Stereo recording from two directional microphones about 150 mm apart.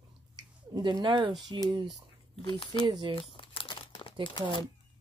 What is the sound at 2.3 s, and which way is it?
Speech, 35° left (ahead or behind).